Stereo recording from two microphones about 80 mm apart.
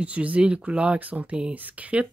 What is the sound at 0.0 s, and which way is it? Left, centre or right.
Speech, centre.